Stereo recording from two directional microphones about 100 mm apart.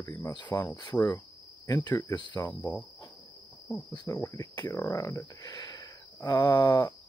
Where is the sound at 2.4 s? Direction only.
20° left (ahead or behind).